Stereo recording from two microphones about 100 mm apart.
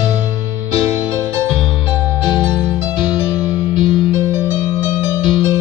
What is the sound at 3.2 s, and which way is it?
Music, 55° left (ahead or behind).